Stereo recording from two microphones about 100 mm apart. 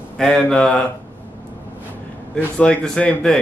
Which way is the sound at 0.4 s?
10° left (ahead or behind).